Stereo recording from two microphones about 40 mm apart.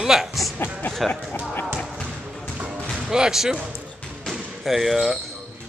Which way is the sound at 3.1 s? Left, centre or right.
Centre.